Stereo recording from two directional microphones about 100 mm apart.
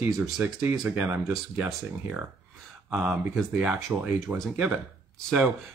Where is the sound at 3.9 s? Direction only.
20° right (ahead or behind).